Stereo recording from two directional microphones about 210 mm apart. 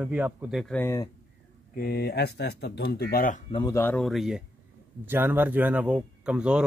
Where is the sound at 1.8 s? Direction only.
50° left (ahead or behind).